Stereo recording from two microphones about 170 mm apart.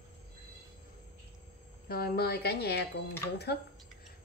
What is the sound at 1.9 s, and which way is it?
A woman's voice, 65° left (ahead or behind).